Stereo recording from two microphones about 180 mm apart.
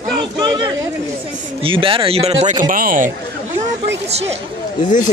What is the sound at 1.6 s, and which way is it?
Speech, 30° right (ahead or behind).